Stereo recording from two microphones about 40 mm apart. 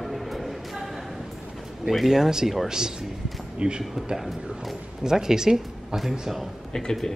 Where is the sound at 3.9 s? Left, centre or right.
Centre.